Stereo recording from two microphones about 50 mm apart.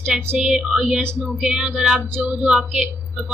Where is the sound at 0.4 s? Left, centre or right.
Centre.